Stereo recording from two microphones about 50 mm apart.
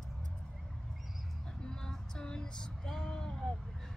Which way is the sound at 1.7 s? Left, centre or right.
Centre.